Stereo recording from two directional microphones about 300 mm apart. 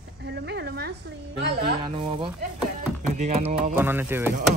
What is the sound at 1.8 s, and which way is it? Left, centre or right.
Speech, centre.